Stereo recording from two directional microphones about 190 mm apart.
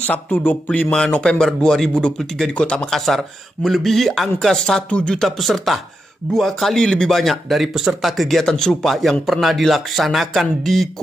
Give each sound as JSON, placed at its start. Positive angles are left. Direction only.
{"t": 0.0, "sound": "speech", "side_deg": 10}